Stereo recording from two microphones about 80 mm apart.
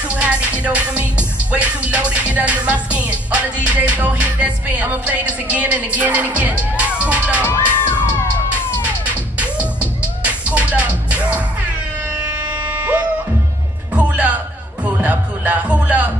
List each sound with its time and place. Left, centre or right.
0.1 s music: centre
7.4 s music: left
8.8 s music: centre
12.3 s a sound: centre
13.9 s music: centre